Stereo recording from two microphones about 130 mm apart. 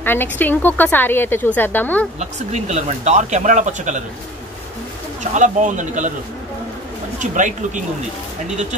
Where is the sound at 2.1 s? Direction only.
60° right (ahead or behind).